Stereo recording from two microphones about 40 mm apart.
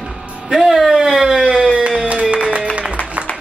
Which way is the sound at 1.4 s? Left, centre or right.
Right.